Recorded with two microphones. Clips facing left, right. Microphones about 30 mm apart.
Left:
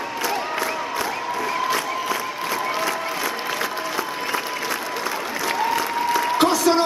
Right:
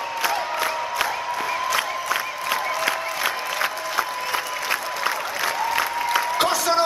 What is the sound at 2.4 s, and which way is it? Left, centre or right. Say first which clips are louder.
Applause: even; right.